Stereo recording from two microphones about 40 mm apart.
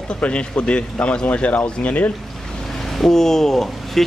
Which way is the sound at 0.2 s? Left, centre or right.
Left.